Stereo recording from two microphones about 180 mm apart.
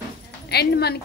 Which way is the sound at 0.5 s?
65° left (ahead or behind).